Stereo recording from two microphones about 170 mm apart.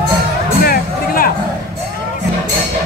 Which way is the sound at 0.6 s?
60° left (ahead or behind).